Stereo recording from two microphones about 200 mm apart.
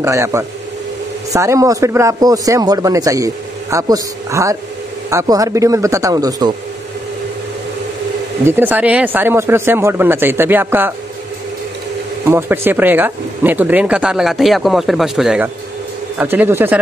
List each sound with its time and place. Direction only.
0.0 s speech: 15° right (ahead or behind)
8.5 s speech: 10° right (ahead or behind)
12.3 s speech: 10° right (ahead or behind)